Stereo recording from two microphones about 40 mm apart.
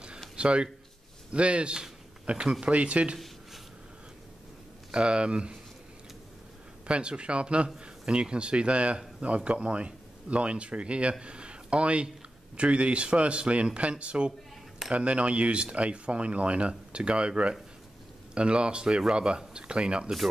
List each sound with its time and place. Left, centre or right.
0.4 s a man's voice: right
4.9 s a man's voice: right
6.9 s a man's voice: right